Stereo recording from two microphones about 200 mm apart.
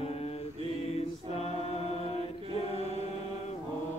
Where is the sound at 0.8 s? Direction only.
30° left (ahead or behind).